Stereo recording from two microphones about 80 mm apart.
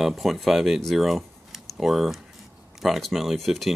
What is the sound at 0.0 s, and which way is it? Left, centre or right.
Speech, centre.